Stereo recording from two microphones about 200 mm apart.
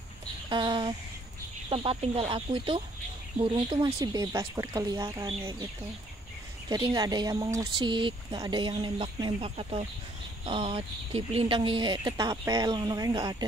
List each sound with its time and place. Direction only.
0.5 s speech: 25° right (ahead or behind)
6.7 s speech: 20° right (ahead or behind)